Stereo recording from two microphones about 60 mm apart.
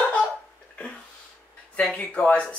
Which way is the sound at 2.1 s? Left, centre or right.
Centre.